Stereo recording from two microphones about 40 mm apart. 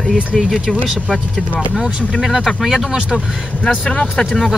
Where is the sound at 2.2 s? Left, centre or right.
Centre.